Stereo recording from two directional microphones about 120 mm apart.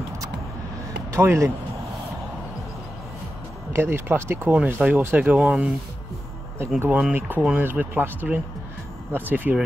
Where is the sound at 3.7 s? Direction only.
20° right (ahead or behind); by 5.7 s 5° right (ahead or behind).